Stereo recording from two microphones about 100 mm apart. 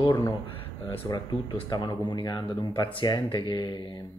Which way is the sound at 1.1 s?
45° left (ahead or behind).